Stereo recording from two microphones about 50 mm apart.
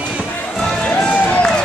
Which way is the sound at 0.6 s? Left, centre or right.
Centre.